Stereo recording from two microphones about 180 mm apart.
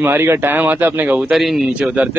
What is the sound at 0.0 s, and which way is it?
Speech, 10° right (ahead or behind).